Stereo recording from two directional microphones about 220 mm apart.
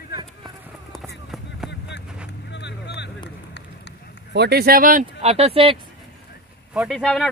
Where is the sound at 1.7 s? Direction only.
50° left (ahead or behind).